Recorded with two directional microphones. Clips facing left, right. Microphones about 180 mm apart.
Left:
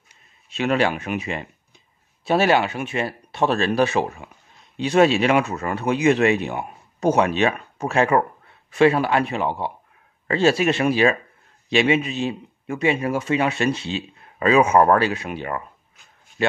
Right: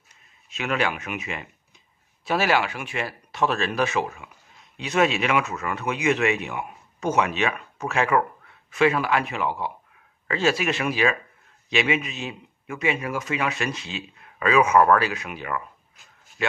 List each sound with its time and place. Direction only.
0.5 s a man's voice: 35° left (ahead or behind)